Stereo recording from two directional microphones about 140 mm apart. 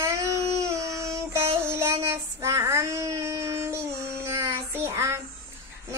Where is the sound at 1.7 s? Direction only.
20° right (ahead or behind).